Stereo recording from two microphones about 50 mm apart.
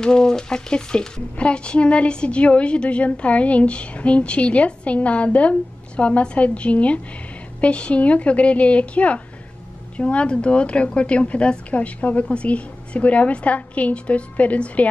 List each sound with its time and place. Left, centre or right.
0.0 s speech: centre